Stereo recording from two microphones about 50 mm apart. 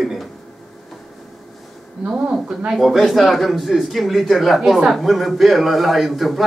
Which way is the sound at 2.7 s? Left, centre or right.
Centre.